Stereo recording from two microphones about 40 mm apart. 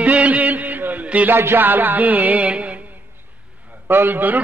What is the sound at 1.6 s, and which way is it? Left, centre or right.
Music, right.